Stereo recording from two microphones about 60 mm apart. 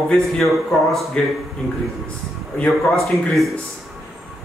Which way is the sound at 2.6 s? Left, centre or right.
Centre.